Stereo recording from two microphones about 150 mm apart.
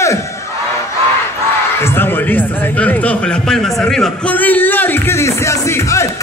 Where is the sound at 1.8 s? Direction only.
15° left (ahead or behind).